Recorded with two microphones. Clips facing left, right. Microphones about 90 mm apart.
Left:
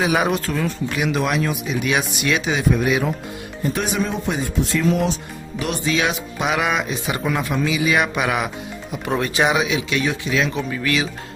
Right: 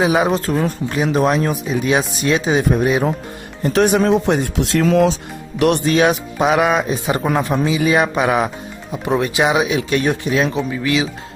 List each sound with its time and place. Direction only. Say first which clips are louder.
0.0 s speech: right 4 dB; 25° right (ahead or behind)
3.6 s speech: right 8 dB; 55° right (ahead or behind); by 4.8 s 75° right (ahead or behind)
5.6 s speech: right 8 dB; 60° right (ahead or behind); by 8.5 s 30° right (ahead or behind)
9.1 s speech: right 3 dB; 15° right (ahead or behind)
9.8 s speech: right 4 dB; 45° right (ahead or behind)
10.3 s speech: right 2 dB; 35° right (ahead or behind)
10.7 s speech: right 3 dB; 20° right (ahead or behind)